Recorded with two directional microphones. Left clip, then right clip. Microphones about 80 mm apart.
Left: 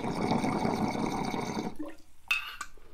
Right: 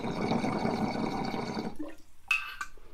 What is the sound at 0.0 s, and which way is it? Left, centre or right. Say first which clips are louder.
Water: left 1 dB; left.